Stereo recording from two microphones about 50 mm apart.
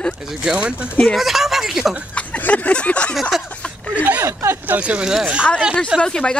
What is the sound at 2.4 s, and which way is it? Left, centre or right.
Speech, left.